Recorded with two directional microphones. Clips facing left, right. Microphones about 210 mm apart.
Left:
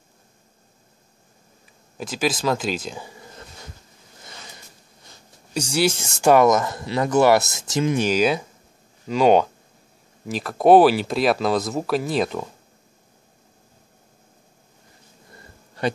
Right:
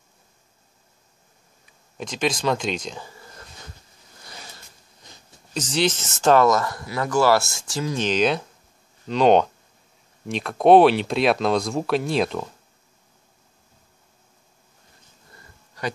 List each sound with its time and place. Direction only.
1.7 s speech: 5° left (ahead or behind)
5.5 s speech: 10° left (ahead or behind)
8.0 s speech: 10° left (ahead or behind)